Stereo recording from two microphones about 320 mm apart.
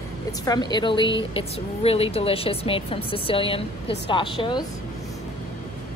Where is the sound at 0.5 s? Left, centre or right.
Centre.